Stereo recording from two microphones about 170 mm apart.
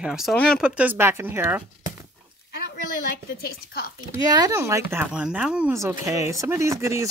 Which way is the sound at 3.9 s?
20° right (ahead or behind).